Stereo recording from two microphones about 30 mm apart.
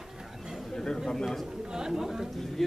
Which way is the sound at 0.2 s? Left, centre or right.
Centre.